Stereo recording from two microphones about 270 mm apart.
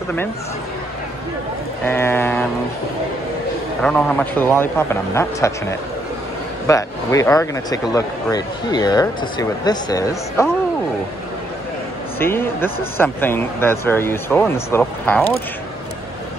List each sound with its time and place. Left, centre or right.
1.9 s speech: centre
3.8 s speech: centre
12.2 s speech: centre